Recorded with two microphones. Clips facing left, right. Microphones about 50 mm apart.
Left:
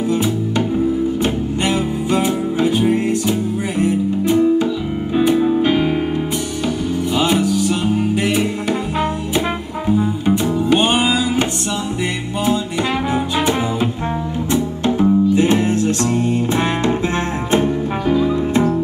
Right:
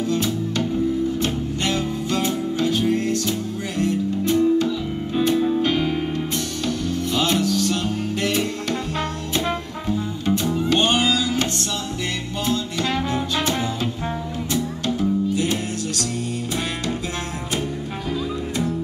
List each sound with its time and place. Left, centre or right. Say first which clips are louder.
0.1 s music: left 5 dB; centre
7.2 s music: left 4 dB; centre
9.8 s music: left 7 dB; centre
14.5 s music: left 6 dB; left
17.5 s music: left 12 dB; left